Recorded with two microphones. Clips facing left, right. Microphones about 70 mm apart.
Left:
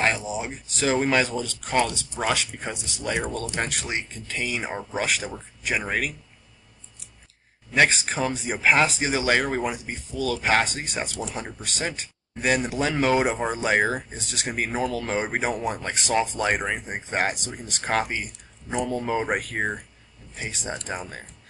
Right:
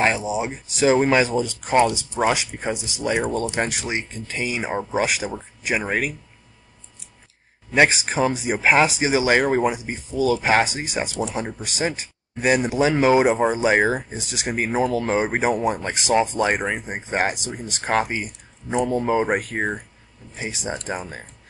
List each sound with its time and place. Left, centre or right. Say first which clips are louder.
0.0 s speech: right 4 dB; centre
7.7 s speech: right 3 dB; centre